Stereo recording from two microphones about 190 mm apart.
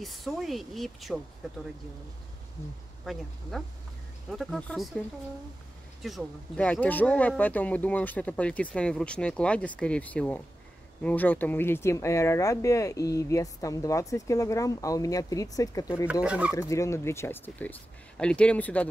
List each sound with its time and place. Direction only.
0.0 s speech: centre (ahead or behind)
3.1 s speech: centre (ahead or behind)
4.3 s speech: centre (ahead or behind)
6.0 s speech: 5° left (ahead or behind); by 16.1 s 20° left (ahead or behind)
16.1 s speech: 5° right (ahead or behind)
16.5 s speech: 15° left (ahead or behind)